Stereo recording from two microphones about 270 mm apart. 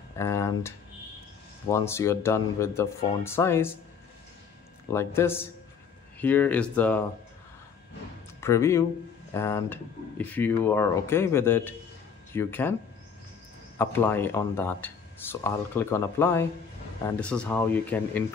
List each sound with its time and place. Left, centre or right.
0.2 s speech: centre
4.9 s speech: centre
8.4 s speech: centre
13.7 s speech: centre